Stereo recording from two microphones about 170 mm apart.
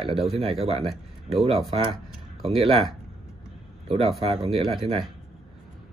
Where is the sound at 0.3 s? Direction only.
35° right (ahead or behind).